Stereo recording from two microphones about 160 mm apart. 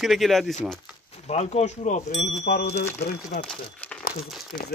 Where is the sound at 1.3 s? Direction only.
45° left (ahead or behind).